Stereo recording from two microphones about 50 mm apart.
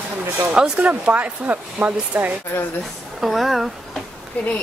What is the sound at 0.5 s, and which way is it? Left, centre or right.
Speech, centre.